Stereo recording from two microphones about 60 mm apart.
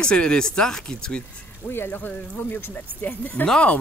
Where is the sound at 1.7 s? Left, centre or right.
Left.